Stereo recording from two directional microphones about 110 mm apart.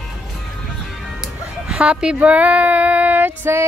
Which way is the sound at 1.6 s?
10° right (ahead or behind).